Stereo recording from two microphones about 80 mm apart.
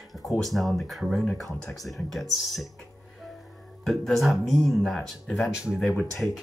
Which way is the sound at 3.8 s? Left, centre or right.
Centre.